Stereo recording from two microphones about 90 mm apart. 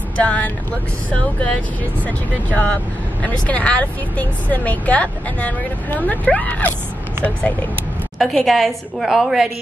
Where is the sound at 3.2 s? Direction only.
15° left (ahead or behind).